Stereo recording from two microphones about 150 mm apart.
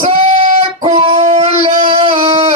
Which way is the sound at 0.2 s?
50° right (ahead or behind).